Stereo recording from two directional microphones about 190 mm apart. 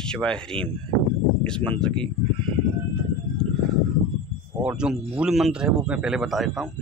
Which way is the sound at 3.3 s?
45° left (ahead or behind).